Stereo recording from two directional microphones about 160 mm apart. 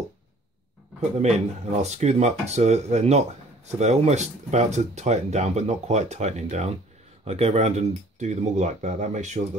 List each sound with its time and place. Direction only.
1.1 s speech: 45° right (ahead or behind)